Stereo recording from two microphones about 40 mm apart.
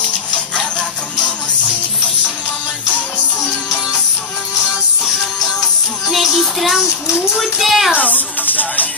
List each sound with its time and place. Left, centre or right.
6.0 s music: centre
6.7 s a child's voice: centre
7.9 s music: left